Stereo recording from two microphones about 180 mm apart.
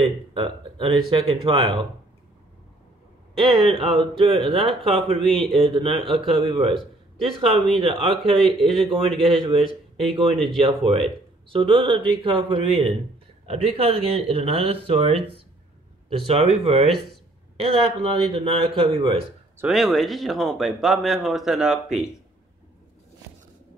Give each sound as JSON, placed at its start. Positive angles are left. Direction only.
{"t": 0.0, "sound": "speech", "side_deg": -30}
{"t": 3.3, "sound": "speech", "side_deg": -30}
{"t": 10.3, "sound": "speech", "side_deg": 5}
{"t": 10.6, "sound": "speech", "side_deg": -30}
{"t": 16.8, "sound": "speech", "side_deg": 0}
{"t": 17.6, "sound": "speech", "side_deg": -35}
{"t": 19.6, "sound": "speech", "side_deg": 0}